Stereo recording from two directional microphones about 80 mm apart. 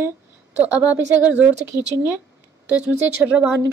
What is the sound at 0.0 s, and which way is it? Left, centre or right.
Speech, right.